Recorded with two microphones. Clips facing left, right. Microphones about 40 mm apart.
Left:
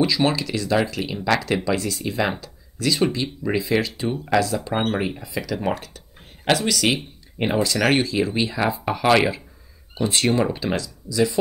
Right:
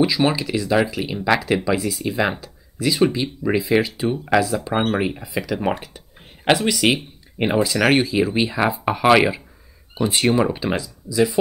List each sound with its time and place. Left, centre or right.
0.0 s speech: centre